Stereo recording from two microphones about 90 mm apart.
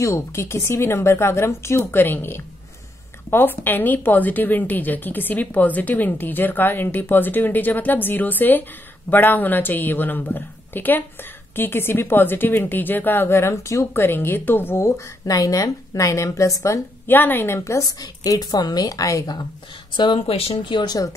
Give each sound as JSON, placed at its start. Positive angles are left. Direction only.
{"t": 0.0, "sound": "a woman's voice", "side_deg": 30}
{"t": 15.2, "sound": "a woman's voice", "side_deg": 40}
{"t": 17.1, "sound": "a woman's voice", "side_deg": 20}
{"t": 17.8, "sound": "a woman's voice", "side_deg": 45}
{"t": 19.9, "sound": "a woman's voice", "side_deg": 60}